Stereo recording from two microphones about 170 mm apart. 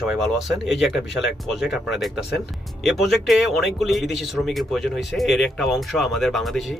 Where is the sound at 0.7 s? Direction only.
Centre (ahead or behind).